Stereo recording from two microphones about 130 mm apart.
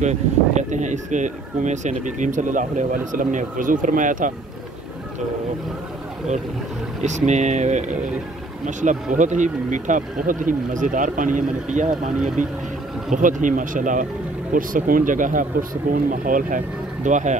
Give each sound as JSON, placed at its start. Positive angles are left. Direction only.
{"t": 0.0, "sound": "speech", "side_deg": -65}
{"t": 7.0, "sound": "speech", "side_deg": -65}
{"t": 13.1, "sound": "speech", "side_deg": -85}